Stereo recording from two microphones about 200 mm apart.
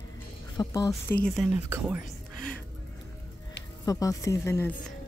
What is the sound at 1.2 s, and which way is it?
Speech, centre (ahead or behind).